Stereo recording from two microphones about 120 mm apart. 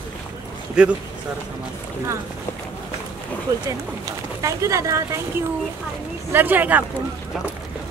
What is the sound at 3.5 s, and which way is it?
Speech, 25° right (ahead or behind).